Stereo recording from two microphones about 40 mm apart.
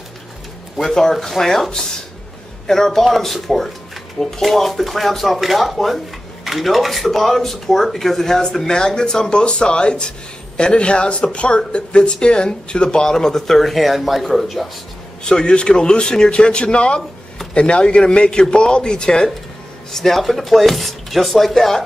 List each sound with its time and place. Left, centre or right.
1.1 s speech: centre
15.2 s speech: left
19.9 s speech: centre